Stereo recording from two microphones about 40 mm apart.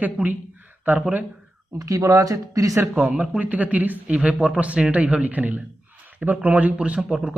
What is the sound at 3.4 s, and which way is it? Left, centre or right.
Speech, right.